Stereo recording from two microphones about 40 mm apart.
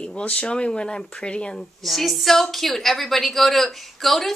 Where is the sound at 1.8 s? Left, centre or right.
Centre.